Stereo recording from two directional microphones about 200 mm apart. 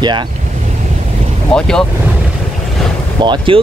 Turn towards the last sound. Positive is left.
turn(degrees=-25)  # may be behind; listen again after turning